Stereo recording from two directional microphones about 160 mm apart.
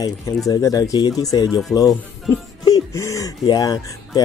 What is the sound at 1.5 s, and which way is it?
Speech, centre (ahead or behind).